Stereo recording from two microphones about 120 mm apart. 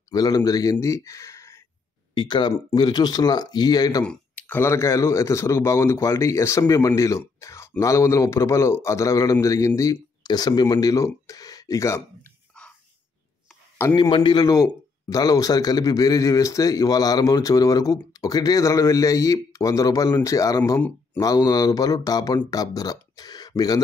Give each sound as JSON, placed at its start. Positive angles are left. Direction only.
{"t": 0.1, "sound": "speech", "side_deg": 35}
{"t": 2.1, "sound": "speech", "side_deg": 40}
{"t": 4.0, "sound": "a man's voice", "side_deg": 10}
{"t": 13.9, "sound": "a man's voice", "side_deg": 40}